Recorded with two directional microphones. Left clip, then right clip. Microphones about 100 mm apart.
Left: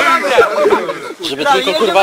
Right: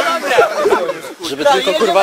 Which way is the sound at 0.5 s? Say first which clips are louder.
Left 2 dB; 45° right (ahead or behind).